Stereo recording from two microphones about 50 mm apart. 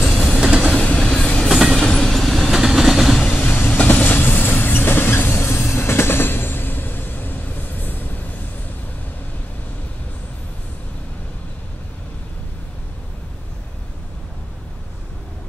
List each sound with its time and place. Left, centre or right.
0.4 s train: right
0.7 s train: centre
1.5 s train: centre
1.8 s train: centre
2.5 s train: centre
3.3 s train: left